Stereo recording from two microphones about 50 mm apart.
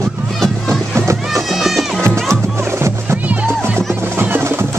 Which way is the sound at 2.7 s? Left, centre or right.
Right.